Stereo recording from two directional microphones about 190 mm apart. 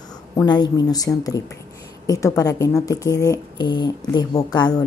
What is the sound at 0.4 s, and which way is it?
Speech, 20° left (ahead or behind).